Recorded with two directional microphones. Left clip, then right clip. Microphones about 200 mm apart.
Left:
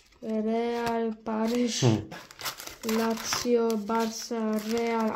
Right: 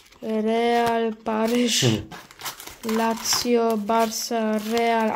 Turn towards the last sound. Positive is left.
turn(degrees=-35)  # may be behind; listen again after turning